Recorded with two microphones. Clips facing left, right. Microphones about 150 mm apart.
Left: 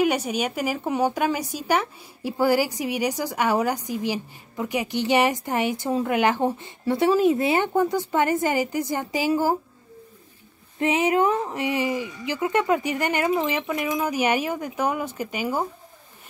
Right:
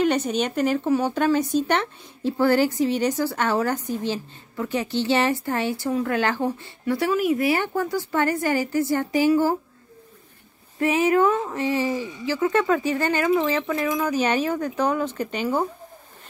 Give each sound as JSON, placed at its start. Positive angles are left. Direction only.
{"t": 0.0, "sound": "speech", "side_deg": 10}
{"t": 10.8, "sound": "a sound", "side_deg": 20}
{"t": 12.3, "sound": "speech", "side_deg": 20}